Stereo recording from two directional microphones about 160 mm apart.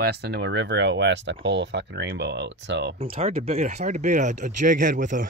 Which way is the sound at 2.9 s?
35° right (ahead or behind).